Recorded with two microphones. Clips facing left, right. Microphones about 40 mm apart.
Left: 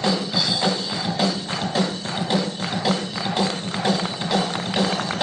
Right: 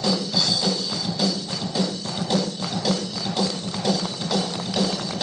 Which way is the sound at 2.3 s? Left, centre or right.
Left.